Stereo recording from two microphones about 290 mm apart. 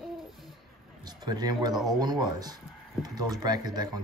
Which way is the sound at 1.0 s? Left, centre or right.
Centre.